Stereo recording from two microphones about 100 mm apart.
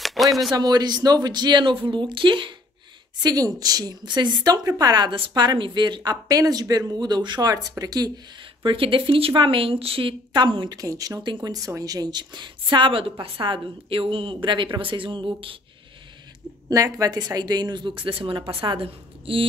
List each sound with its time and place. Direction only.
0.0 s a sound: centre (ahead or behind)
0.5 s speech: 45° right (ahead or behind)
3.2 s a woman's voice: 40° right (ahead or behind)
8.6 s a woman's voice: 60° right (ahead or behind)
10.3 s speech: 50° right (ahead or behind)
10.8 s a woman's voice: 35° right (ahead or behind); by 15.5 s 55° right (ahead or behind)
16.6 s speech: 35° right (ahead or behind); by 19.4 s 65° right (ahead or behind)